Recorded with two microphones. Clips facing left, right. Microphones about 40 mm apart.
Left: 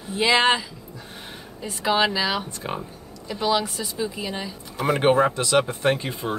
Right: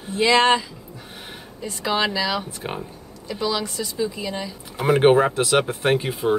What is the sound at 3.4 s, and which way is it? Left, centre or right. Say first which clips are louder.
Speech: left 2 dB; left.